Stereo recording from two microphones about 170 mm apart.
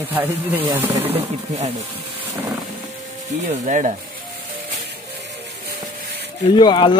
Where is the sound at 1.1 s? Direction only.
40° right (ahead or behind).